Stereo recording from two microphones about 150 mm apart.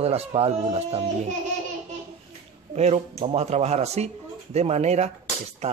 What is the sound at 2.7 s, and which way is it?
Speech, 45° right (ahead or behind).